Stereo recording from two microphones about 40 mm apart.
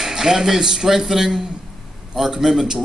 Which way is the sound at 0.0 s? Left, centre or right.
Centre.